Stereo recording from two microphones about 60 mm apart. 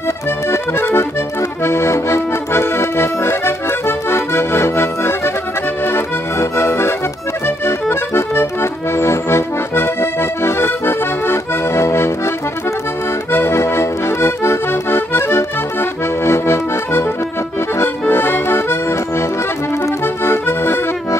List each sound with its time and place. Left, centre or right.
0.5 s accordion: left
13.3 s accordion: left
20.2 s accordion: left